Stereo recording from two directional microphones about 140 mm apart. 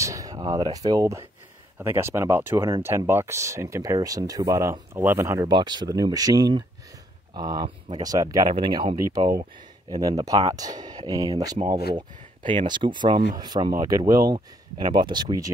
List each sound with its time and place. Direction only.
0.0 s speech: 25° right (ahead or behind)